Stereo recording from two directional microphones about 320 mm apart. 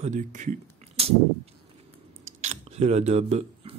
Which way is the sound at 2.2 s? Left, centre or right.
Right.